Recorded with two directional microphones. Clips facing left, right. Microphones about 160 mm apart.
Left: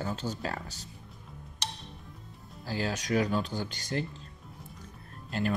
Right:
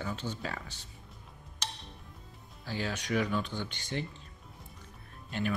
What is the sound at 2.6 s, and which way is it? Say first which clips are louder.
Speech: left 3 dB; 40° left (ahead or behind).